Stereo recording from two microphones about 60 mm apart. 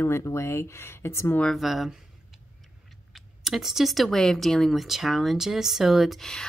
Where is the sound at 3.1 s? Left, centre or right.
Centre.